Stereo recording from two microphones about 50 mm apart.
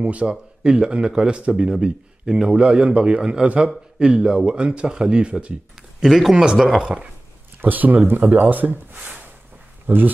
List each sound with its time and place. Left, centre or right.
0.0 s a man's voice: right
5.8 s a sound: centre
6.3 s speech: centre
7.6 s speech: right